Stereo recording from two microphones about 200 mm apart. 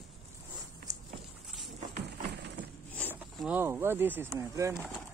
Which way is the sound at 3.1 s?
5° right (ahead or behind).